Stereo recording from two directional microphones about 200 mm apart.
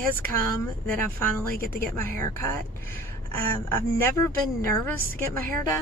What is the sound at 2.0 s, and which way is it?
Speech, 10° left (ahead or behind).